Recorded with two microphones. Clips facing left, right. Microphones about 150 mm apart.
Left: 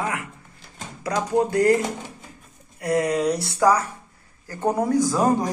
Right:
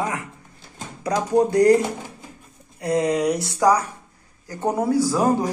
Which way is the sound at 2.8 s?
20° right (ahead or behind).